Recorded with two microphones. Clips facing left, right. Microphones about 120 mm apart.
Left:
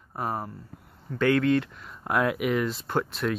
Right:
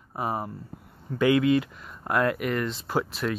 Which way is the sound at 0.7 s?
5° right (ahead or behind).